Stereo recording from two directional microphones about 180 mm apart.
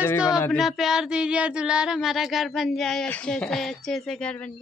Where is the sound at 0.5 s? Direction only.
Centre (ahead or behind).